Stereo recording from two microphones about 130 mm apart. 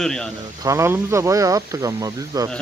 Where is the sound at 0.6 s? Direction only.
20° right (ahead or behind).